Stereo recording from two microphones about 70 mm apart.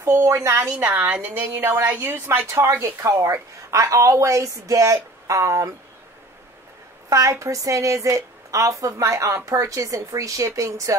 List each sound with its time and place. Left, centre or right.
0.0 s speech: right
0.8 s a woman's voice: right
1.6 s speech: right
7.1 s speech: right